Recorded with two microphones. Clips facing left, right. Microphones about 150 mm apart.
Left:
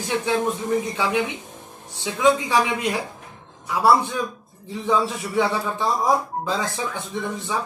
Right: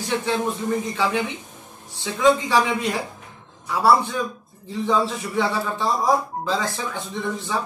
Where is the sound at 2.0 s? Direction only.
15° left (ahead or behind).